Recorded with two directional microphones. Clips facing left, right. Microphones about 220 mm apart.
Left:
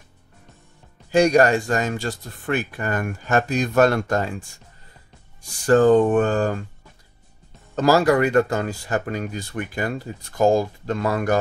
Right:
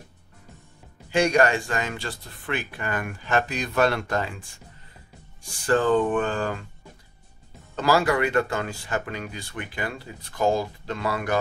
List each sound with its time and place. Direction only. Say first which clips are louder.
1.1 s speech: left 5 dB; 40° left (ahead or behind)
5.7 s speech: left 6 dB; 45° left (ahead or behind)
7.7 s speech: left 5 dB; 40° left (ahead or behind)